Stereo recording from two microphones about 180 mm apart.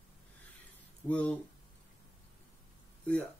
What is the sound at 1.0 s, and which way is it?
Speech, 10° left (ahead or behind).